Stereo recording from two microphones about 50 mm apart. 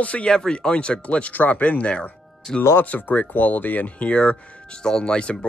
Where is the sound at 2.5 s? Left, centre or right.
Centre.